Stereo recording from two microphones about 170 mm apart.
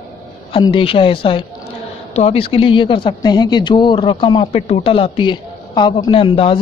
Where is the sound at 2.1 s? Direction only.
35° left (ahead or behind).